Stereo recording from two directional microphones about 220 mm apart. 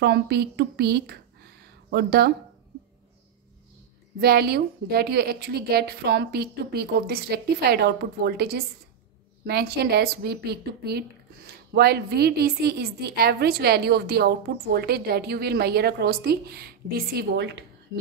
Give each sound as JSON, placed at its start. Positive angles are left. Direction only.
{"t": 0.0, "sound": "a woman's voice", "side_deg": -50}
{"t": 4.2, "sound": "a woman's voice", "side_deg": -45}